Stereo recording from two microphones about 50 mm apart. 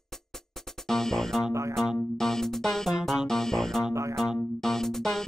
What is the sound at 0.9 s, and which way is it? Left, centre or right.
Music, centre.